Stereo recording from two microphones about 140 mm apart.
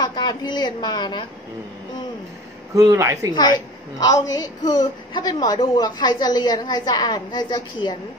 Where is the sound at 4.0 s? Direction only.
25° left (ahead or behind).